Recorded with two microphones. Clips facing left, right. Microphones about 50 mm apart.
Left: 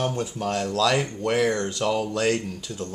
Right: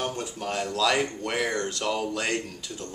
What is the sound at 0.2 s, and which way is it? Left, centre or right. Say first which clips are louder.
Speech: left 4 dB; centre.